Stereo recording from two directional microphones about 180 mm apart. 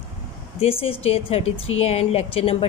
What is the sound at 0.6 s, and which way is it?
A woman's voice, 30° left (ahead or behind).